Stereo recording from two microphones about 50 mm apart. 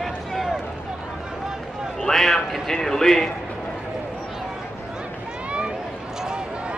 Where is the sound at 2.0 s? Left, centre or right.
Centre.